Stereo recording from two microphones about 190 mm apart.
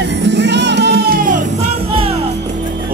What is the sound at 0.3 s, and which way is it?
Music, 65° right (ahead or behind).